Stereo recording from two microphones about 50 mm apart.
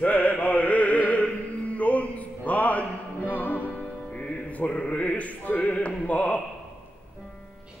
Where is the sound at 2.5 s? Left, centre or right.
Left.